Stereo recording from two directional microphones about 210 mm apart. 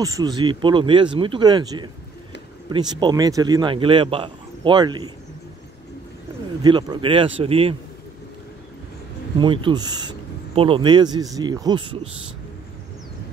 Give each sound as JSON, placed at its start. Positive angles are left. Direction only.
{"t": 0.0, "sound": "speech", "side_deg": -15}
{"t": 6.6, "sound": "speech", "side_deg": -20}
{"t": 9.4, "sound": "speech", "side_deg": -20}